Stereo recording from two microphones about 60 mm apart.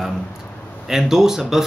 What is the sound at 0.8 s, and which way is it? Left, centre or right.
Speech, centre.